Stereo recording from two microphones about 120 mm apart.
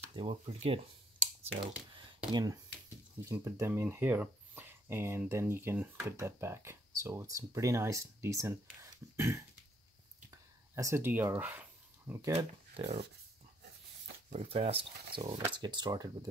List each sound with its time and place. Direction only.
0.1 s speech: 45° right (ahead or behind)
1.6 s speech: 45° right (ahead or behind)
2.3 s speech: 30° right (ahead or behind)
3.2 s speech: 20° right (ahead or behind)
12.7 s speech: 65° right (ahead or behind)
14.3 s speech: 60° right (ahead or behind); by 16.3 s 35° right (ahead or behind)